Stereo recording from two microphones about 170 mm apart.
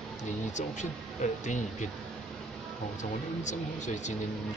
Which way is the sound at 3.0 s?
45° left (ahead or behind).